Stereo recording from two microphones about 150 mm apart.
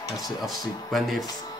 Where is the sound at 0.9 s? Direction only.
Centre (ahead or behind).